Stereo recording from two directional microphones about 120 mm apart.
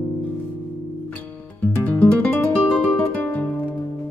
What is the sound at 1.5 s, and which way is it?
Music, 15° left (ahead or behind).